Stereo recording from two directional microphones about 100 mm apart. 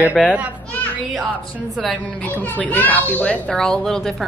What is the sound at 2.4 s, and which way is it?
A child's voice, 15° left (ahead or behind).